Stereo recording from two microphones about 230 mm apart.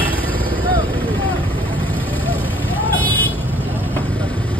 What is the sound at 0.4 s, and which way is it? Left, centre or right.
Vehicle, centre.